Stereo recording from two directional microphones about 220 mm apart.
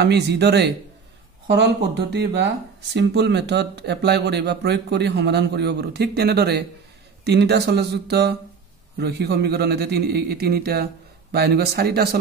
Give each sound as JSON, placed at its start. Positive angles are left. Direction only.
{"t": 0.0, "sound": "speech", "side_deg": -50}